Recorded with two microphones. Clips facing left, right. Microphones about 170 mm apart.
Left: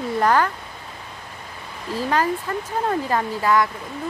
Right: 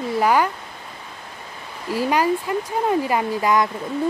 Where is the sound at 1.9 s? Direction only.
10° right (ahead or behind).